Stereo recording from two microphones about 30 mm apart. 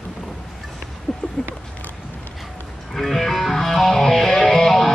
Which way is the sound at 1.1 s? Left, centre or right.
Centre.